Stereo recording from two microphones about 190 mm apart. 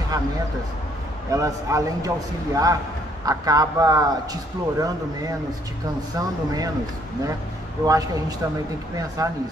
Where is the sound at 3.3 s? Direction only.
20° right (ahead or behind).